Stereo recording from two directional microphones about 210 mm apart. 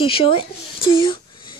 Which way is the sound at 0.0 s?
25° left (ahead or behind).